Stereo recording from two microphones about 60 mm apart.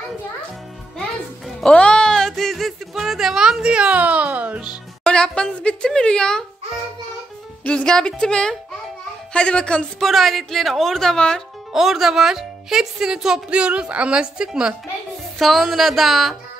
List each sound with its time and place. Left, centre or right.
1.6 s a sound: centre; by 4.6 s right
5.0 s a woman's voice: centre
7.6 s speech: centre
9.9 s a woman's voice: centre
11.7 s speech: centre
15.3 s a woman's voice: centre